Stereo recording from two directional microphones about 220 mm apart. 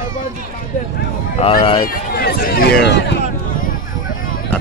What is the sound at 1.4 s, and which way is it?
Speech, 25° left (ahead or behind).